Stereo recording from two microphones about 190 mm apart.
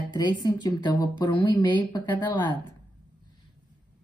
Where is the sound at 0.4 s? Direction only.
20° left (ahead or behind).